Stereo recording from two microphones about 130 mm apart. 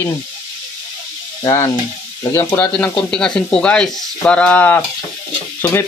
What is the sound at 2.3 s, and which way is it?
Speech, 15° left (ahead or behind).